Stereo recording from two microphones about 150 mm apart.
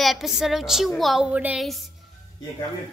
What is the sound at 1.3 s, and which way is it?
Speech, 10° right (ahead or behind).